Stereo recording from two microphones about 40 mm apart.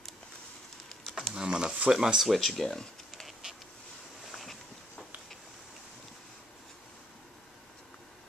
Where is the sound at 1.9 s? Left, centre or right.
Centre.